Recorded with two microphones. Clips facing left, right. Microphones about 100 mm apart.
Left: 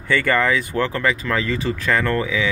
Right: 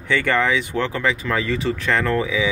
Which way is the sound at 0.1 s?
Centre (ahead or behind).